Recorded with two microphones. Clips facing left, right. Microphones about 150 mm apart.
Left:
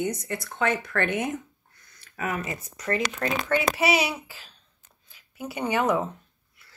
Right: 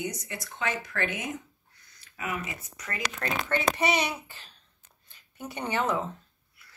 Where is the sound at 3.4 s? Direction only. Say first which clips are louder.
Left 3 dB; 10° left (ahead or behind).